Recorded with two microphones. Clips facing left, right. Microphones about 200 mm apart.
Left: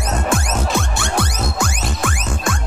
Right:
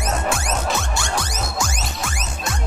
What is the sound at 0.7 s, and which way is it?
Music, 60° left (ahead or behind).